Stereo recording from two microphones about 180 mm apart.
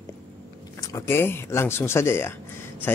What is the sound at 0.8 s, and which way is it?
Speech, 15° left (ahead or behind).